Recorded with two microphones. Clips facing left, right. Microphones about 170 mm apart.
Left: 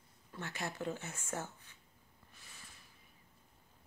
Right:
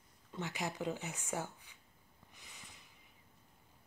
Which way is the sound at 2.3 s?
15° right (ahead or behind).